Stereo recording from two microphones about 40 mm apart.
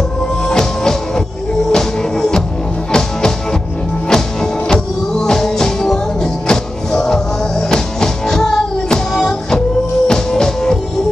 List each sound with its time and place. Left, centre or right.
0.5 s music: centre